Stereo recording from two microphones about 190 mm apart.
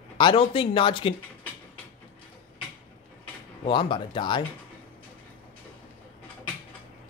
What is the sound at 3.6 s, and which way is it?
Speech, 25° left (ahead or behind).